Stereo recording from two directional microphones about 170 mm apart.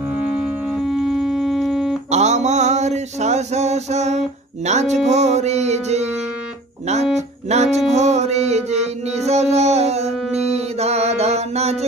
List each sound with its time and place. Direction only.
0.3 s music: 5° right (ahead or behind)
2.0 s a sound: 40° right (ahead or behind)
6.9 s music: 40° right (ahead or behind)